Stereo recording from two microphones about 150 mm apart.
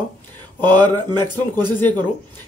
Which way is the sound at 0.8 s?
30° right (ahead or behind).